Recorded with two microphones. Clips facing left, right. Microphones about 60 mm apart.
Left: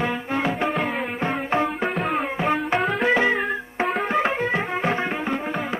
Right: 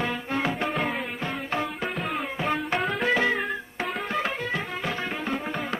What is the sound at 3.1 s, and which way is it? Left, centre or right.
Music, centre.